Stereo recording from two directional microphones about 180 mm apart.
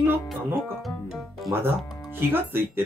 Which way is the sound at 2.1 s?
10° right (ahead or behind).